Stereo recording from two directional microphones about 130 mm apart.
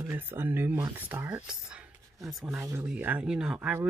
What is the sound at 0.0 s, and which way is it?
Speech, 15° right (ahead or behind).